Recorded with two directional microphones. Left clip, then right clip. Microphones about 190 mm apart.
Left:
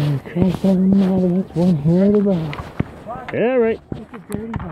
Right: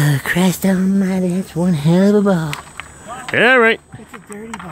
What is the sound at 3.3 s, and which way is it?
Speech, 20° right (ahead or behind).